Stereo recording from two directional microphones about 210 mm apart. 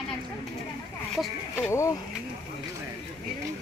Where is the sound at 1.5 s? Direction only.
15° left (ahead or behind).